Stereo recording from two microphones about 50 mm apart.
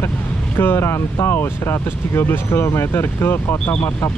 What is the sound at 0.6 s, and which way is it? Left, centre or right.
Speech, left.